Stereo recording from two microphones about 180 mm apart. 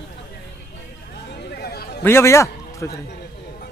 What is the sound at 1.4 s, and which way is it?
Chatter, 60° left (ahead or behind).